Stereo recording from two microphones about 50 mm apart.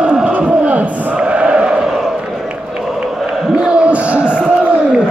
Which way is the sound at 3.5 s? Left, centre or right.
Right.